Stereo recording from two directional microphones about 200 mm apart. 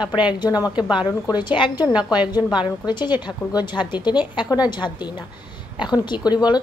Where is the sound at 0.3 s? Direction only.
20° left (ahead or behind).